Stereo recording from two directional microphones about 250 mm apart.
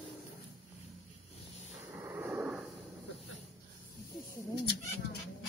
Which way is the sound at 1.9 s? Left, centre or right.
Centre.